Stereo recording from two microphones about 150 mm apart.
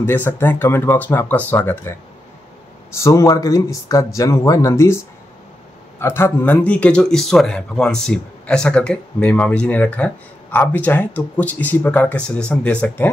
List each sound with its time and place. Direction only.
0.0 s speech: 15° left (ahead or behind)